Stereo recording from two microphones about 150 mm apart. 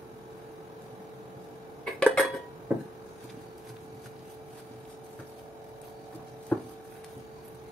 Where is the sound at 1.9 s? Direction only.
10° left (ahead or behind).